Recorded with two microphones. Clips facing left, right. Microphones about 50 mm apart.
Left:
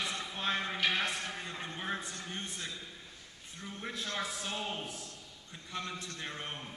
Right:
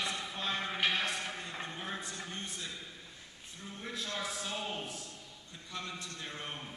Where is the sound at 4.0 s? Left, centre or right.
Left.